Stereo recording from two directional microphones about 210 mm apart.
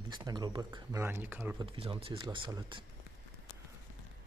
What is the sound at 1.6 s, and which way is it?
Speech, 25° right (ahead or behind).